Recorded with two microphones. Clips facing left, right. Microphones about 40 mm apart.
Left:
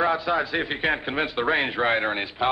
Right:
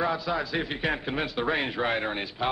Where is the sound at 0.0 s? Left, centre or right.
Left.